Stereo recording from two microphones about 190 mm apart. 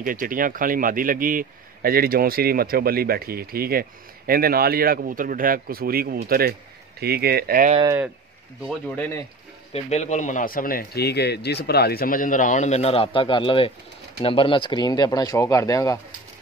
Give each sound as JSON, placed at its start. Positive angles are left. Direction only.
{"t": 0.0, "sound": "speech", "side_deg": -45}
{"t": 8.6, "sound": "speech", "side_deg": 10}
{"t": 9.7, "sound": "speech", "side_deg": 35}